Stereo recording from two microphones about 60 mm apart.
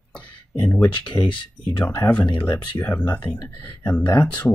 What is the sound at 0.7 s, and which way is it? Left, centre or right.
Speech, left.